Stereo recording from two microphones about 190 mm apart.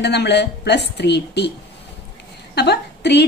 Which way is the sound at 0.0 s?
60° left (ahead or behind).